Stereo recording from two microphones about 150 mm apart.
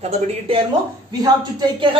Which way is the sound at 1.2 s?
30° right (ahead or behind).